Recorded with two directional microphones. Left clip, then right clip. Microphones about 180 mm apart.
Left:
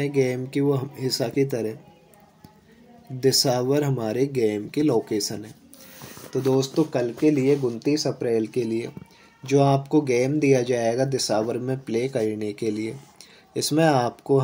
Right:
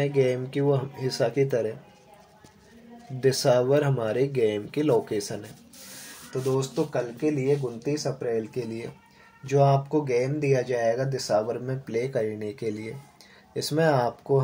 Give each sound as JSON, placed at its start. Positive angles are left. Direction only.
{"t": 0.0, "sound": "speech", "side_deg": 15}
{"t": 3.2, "sound": "speech", "side_deg": 15}
{"t": 6.6, "sound": "speech", "side_deg": 35}
{"t": 8.6, "sound": "speech", "side_deg": 20}
{"t": 11.6, "sound": "speech", "side_deg": 20}